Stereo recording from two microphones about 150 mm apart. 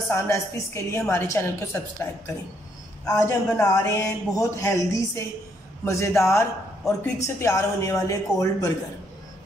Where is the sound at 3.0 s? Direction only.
20° left (ahead or behind).